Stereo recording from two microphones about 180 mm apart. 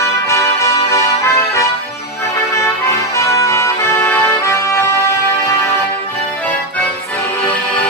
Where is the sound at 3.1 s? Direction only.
15° left (ahead or behind).